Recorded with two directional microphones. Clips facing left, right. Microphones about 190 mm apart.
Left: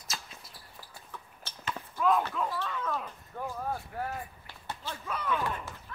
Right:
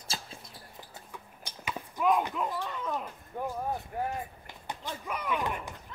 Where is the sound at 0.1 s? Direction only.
30° right (ahead or behind).